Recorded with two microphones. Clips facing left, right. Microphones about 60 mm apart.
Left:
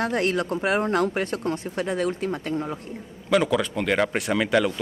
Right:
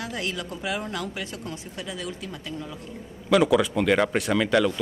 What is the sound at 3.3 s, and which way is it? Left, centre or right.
Speech, centre.